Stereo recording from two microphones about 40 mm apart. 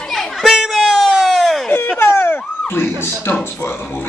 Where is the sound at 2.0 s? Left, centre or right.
Left.